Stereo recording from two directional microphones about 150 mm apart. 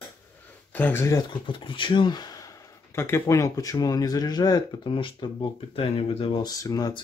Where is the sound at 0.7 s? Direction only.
10° left (ahead or behind).